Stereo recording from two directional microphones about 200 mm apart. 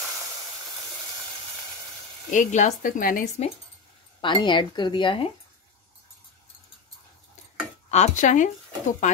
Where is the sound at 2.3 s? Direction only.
40° left (ahead or behind).